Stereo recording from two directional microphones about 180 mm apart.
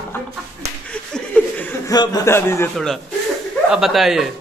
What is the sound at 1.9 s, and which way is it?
Speech, 20° left (ahead or behind).